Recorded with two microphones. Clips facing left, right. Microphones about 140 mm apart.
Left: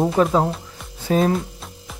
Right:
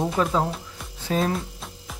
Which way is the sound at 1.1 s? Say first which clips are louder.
Left 6 dB; 5° left (ahead or behind).